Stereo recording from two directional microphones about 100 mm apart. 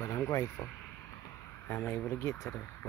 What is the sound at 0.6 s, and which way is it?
Speech, 25° left (ahead or behind).